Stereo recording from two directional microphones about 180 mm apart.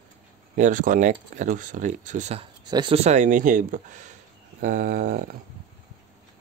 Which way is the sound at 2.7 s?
30° right (ahead or behind).